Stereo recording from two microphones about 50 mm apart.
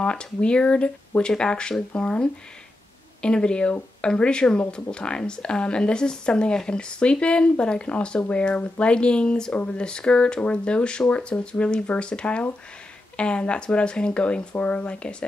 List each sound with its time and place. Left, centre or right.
0.0 s speech: left